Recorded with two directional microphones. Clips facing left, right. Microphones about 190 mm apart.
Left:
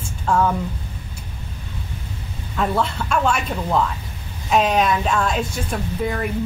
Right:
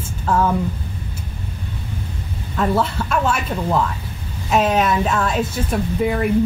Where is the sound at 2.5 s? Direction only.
Centre (ahead or behind).